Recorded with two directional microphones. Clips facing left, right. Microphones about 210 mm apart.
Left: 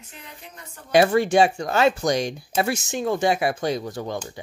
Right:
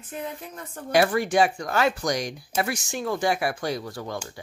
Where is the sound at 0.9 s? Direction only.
25° left (ahead or behind).